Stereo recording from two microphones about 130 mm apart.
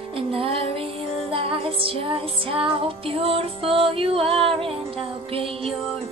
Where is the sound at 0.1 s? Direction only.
45° right (ahead or behind).